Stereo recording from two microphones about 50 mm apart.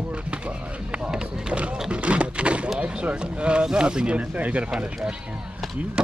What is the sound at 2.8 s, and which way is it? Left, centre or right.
Speech, right.